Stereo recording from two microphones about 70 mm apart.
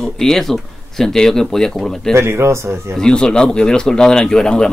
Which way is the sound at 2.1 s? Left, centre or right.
Right.